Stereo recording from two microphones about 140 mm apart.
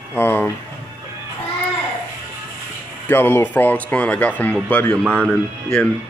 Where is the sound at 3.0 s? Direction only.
15° left (ahead or behind).